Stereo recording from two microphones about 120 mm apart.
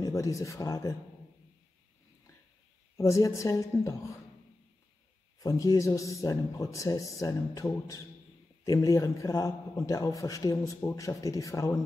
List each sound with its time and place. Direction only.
0.0 s speech: 25° left (ahead or behind)
3.0 s speech: 25° left (ahead or behind)
5.4 s speech: 30° left (ahead or behind)